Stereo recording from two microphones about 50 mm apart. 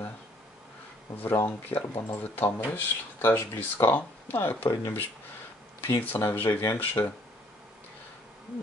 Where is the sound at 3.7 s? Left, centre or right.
Left.